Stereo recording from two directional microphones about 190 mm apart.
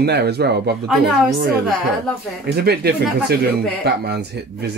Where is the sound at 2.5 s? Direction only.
55° right (ahead or behind).